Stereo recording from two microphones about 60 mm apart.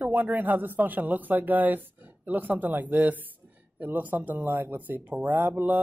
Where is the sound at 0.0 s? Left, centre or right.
Right.